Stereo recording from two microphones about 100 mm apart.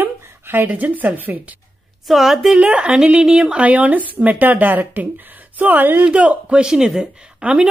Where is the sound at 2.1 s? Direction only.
Centre (ahead or behind).